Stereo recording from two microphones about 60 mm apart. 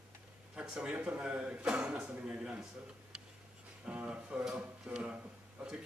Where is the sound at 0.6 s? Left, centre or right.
Centre.